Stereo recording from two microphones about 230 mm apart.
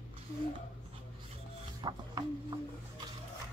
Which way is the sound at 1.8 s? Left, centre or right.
Centre.